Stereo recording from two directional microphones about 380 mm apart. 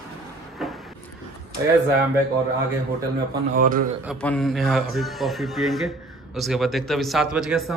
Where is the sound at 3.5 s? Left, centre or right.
Right.